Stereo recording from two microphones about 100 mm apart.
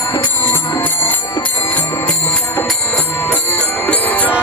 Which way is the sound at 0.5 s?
20° left (ahead or behind).